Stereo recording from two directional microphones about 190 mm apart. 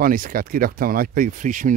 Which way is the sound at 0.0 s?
50° right (ahead or behind).